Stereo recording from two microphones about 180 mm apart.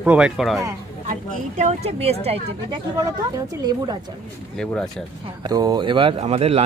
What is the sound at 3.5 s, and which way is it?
Speech, 20° right (ahead or behind).